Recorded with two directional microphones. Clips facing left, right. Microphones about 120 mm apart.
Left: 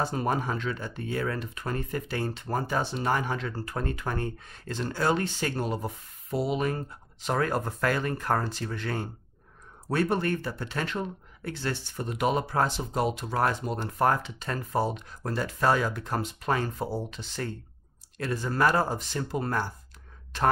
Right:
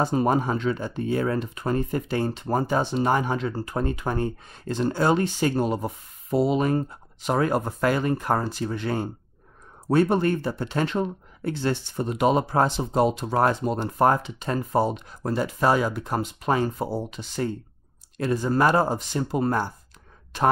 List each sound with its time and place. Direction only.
0.0 s speech: 25° right (ahead or behind)
7.2 s speech: 15° right (ahead or behind)